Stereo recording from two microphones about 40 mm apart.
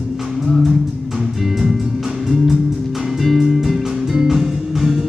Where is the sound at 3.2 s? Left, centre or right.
Centre.